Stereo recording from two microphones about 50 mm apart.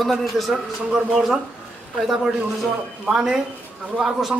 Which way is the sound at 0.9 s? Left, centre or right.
Centre.